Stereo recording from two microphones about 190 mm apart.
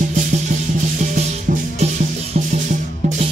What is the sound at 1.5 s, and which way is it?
Music, 45° right (ahead or behind).